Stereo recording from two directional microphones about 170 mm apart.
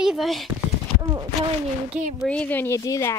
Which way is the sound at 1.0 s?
20° right (ahead or behind).